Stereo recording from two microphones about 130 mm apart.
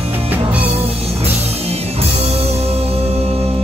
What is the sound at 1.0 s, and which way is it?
Music, 50° right (ahead or behind).